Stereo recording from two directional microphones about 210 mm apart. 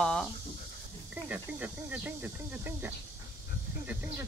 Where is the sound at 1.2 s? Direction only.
5° right (ahead or behind).